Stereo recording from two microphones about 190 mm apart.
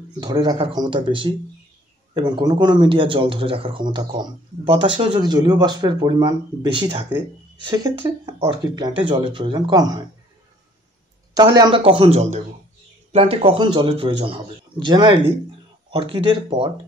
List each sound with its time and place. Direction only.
0.2 s speech: 20° right (ahead or behind)
11.3 s a man's voice: 20° right (ahead or behind)